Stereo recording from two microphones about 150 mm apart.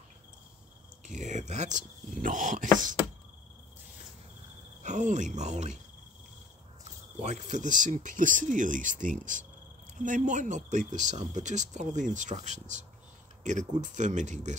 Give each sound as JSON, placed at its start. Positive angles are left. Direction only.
{"t": 1.0, "sound": "speech", "side_deg": -55}
{"t": 4.8, "sound": "speech", "side_deg": -55}
{"t": 7.2, "sound": "speech", "side_deg": -50}